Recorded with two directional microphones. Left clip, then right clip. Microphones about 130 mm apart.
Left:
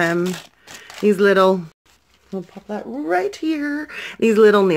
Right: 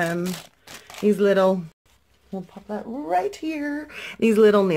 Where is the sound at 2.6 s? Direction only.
30° left (ahead or behind).